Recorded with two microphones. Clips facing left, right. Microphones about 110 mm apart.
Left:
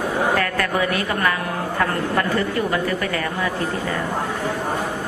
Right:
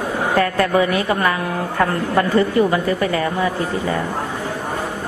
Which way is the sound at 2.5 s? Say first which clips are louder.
Right 5 dB; 20° right (ahead or behind).